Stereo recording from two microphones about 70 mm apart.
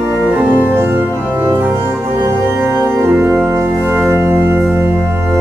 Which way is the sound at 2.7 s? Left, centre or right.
Right.